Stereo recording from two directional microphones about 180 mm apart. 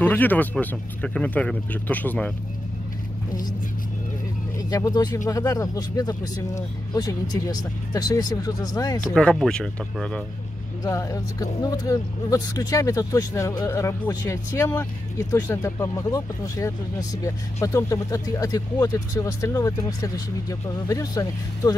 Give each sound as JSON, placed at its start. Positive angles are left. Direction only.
{"t": 0.0, "sound": "speech", "side_deg": 10}
{"t": 4.6, "sound": "speech", "side_deg": 20}
{"t": 9.1, "sound": "speech", "side_deg": 5}
{"t": 10.8, "sound": "speech", "side_deg": 15}